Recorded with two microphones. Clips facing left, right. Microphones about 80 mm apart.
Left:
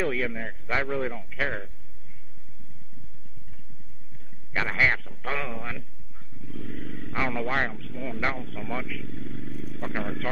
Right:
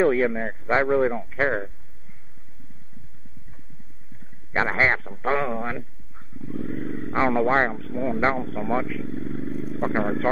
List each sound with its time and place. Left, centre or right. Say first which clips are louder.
0.0 s speech: right 8 dB; right
4.5 s speech: right 4 dB; right